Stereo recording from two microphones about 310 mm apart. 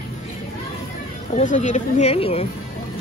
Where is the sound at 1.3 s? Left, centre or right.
Left.